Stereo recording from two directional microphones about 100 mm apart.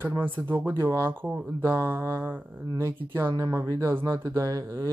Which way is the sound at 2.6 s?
30° right (ahead or behind).